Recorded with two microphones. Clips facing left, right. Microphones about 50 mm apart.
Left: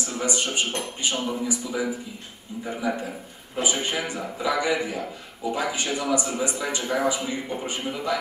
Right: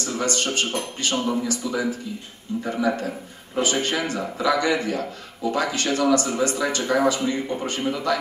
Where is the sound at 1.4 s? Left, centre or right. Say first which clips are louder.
Right 2 dB; centre.